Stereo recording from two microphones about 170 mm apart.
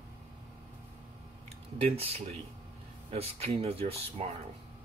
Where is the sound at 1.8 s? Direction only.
35° right (ahead or behind).